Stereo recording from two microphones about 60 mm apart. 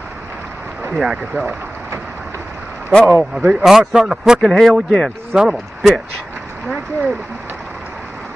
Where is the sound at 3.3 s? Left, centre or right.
Centre.